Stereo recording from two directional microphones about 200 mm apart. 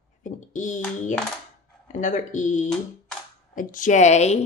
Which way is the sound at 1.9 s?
40° left (ahead or behind).